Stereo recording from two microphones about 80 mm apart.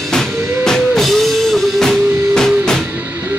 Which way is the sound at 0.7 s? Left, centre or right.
Centre.